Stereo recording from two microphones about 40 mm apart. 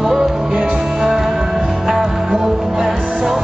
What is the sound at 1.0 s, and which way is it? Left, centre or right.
Music, centre.